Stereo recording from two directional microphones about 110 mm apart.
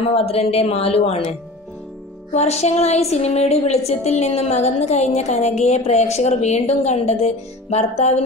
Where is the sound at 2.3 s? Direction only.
80° left.